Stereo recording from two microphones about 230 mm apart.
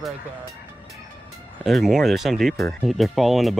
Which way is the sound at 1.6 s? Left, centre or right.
Centre.